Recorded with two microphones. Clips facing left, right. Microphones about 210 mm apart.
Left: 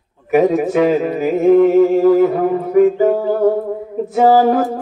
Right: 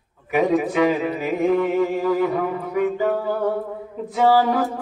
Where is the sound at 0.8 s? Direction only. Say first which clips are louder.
Left 6 dB; 45° left (ahead or behind).